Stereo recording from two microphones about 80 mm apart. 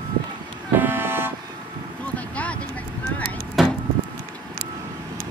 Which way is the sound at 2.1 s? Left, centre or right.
Centre.